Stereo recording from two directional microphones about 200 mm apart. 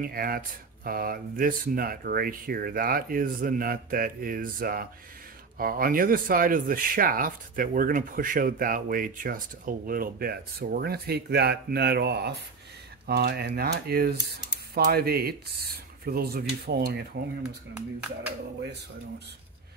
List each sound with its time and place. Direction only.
0.0 s speech: 45° right (ahead or behind)
17.7 s speech: 5° right (ahead or behind)
18.6 s speech: 55° right (ahead or behind)